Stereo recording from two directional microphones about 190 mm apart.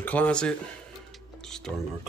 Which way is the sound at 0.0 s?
10° left (ahead or behind).